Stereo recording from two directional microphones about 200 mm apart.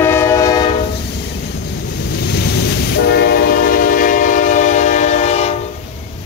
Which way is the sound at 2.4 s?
55° left (ahead or behind).